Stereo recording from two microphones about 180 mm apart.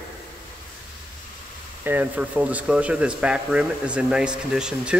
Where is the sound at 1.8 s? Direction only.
10° right (ahead or behind).